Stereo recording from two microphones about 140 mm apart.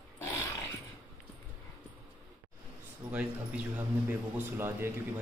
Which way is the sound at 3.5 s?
10° right (ahead or behind).